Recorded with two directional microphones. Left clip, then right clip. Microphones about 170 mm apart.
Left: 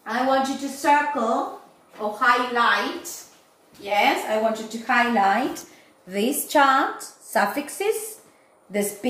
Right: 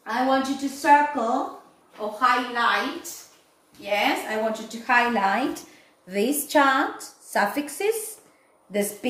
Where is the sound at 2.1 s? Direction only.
10° right (ahead or behind).